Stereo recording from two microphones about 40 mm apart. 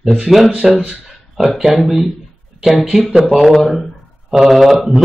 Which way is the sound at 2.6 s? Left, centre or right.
Centre.